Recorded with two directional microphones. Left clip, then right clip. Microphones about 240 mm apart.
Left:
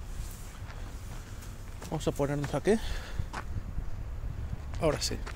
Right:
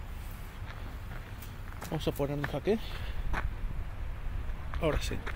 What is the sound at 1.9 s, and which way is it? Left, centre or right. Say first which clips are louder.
Speech: left 2 dB; centre.